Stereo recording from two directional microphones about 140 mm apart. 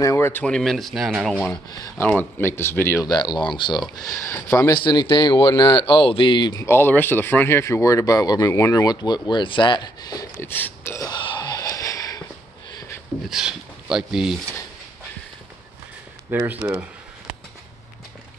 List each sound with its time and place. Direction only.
0.0 s speech: 20° left (ahead or behind); by 1.5 s centre (ahead or behind)
2.0 s speech: 15° left (ahead or behind)
4.8 s speech: 35° left (ahead or behind)
6.6 s speech: 15° left (ahead or behind)
10.4 s speech: 15° left (ahead or behind)
11.1 s a sound: 35° left (ahead or behind)
13.2 s speech: 5° right (ahead or behind)
16.3 s speech: 15° right (ahead or behind)